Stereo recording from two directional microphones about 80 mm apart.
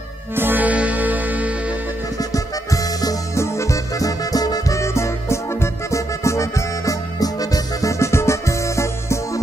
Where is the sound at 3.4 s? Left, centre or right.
Left.